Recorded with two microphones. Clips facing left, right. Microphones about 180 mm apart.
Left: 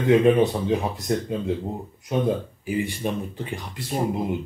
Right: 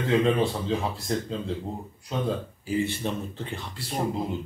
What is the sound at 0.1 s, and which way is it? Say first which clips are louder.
Speech: left 6 dB; 20° left (ahead or behind).